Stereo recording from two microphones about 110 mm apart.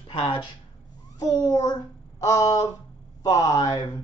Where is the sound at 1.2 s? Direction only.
30° left (ahead or behind).